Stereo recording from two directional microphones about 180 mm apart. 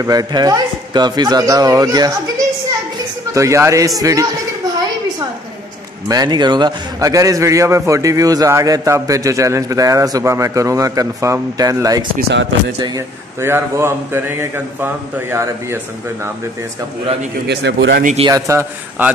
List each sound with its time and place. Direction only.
0.0 s a man's voice: 20° right (ahead or behind)
3.3 s a man's voice: 15° right (ahead or behind)
6.0 s a man's voice: 20° right (ahead or behind)
12.2 s a man's voice: 70° right (ahead or behind)
12.7 s a man's voice: 20° right (ahead or behind)
17.5 s a man's voice: 80° right
18.2 s a man's voice: 15° right (ahead or behind)